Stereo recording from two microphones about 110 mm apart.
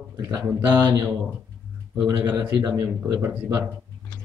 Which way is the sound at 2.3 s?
15° right (ahead or behind).